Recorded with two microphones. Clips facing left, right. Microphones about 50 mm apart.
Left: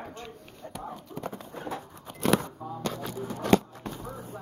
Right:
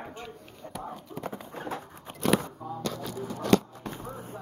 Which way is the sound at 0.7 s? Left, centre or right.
Centre.